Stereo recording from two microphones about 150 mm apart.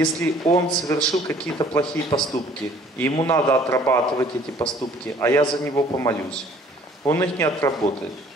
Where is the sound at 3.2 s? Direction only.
20° left (ahead or behind).